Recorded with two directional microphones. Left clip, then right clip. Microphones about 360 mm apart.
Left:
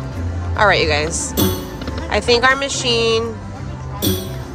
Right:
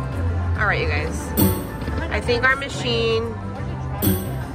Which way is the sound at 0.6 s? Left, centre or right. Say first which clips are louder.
Left 8 dB; centre.